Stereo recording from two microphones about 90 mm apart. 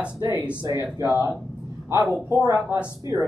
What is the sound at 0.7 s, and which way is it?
Speech, 25° right (ahead or behind).